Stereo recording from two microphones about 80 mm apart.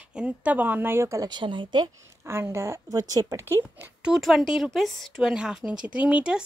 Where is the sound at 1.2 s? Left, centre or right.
Right.